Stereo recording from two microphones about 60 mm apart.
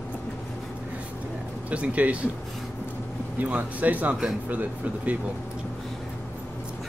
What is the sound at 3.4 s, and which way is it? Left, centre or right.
Speech, right.